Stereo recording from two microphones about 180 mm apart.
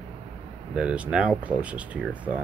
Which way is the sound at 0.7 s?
5° right (ahead or behind).